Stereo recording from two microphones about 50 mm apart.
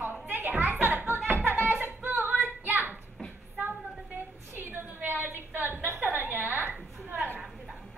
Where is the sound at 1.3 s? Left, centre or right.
Right.